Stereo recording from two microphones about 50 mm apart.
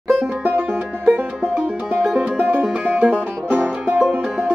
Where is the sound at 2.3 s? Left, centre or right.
Right.